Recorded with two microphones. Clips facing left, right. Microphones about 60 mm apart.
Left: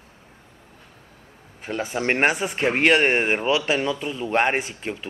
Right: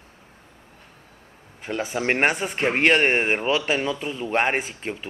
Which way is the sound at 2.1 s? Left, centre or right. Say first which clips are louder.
Left 1 dB; centre.